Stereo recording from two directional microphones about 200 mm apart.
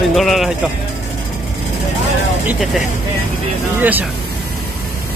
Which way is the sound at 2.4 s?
Centre (ahead or behind).